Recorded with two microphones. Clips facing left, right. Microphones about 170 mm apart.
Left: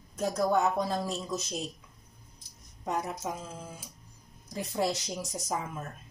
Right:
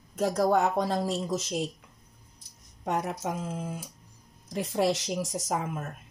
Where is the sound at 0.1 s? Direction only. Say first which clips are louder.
Right 3 dB; 90° right.